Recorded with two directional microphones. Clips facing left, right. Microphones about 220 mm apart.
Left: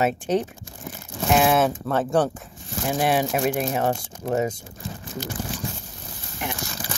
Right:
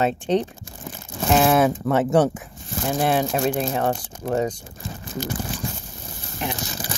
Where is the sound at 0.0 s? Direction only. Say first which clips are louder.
Right 1 dB; 5° left (ahead or behind).